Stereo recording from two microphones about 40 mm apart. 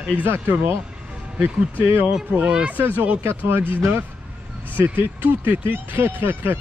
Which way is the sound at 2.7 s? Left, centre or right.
Right.